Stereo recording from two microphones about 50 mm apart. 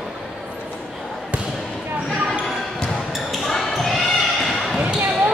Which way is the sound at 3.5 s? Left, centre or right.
Centre.